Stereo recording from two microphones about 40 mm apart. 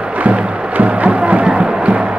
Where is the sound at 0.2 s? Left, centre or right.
Right.